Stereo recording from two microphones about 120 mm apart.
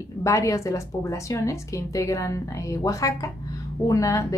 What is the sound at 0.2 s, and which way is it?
A woman's voice, 25° left (ahead or behind).